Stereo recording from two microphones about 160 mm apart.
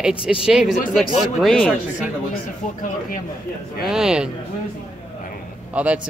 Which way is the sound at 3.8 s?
5° right (ahead or behind).